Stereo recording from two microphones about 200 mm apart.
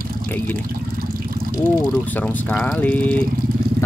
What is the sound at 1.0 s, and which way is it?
Water, 50° right (ahead or behind).